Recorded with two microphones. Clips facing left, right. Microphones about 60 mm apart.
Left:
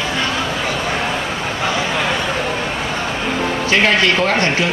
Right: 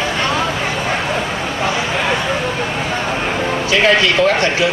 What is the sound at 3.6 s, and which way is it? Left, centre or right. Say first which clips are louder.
Speech: right 1 dB; left.